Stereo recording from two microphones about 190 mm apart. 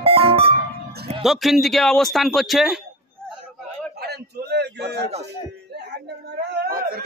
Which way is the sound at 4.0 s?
60° right (ahead or behind).